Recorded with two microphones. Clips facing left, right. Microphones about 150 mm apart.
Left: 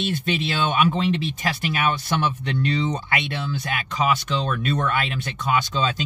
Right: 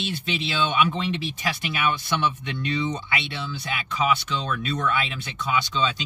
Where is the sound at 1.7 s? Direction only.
45° left (ahead or behind).